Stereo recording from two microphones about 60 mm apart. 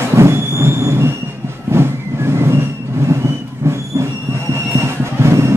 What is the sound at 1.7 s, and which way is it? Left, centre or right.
Vehicle, right.